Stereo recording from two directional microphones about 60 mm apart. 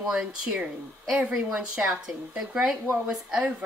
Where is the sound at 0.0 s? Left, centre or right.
Centre.